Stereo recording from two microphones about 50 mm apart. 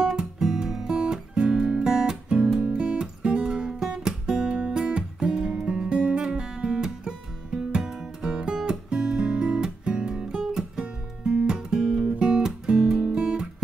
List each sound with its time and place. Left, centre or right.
0.0 s music: centre
0.8 s music: centre